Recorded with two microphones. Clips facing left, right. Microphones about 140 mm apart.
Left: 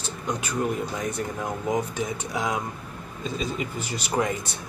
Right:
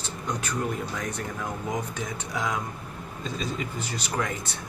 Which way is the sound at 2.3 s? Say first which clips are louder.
Left 1 dB; 15° left (ahead or behind).